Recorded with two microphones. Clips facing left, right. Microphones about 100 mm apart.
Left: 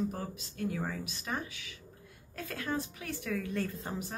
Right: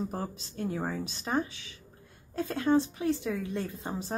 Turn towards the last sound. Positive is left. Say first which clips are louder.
# right 1 dB
turn(degrees=-20)  # may be behind; listen again after turning